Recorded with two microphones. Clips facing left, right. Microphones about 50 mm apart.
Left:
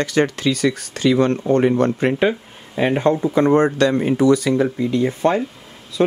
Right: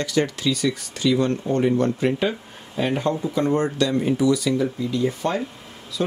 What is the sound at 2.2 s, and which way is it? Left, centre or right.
Speech, left.